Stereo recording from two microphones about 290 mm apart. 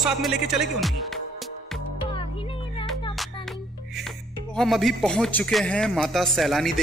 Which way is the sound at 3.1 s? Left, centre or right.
Centre.